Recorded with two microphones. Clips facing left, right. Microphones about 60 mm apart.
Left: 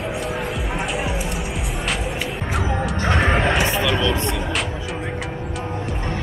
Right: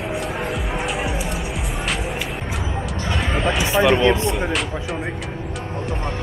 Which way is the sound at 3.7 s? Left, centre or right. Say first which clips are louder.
Right 5 dB; centre.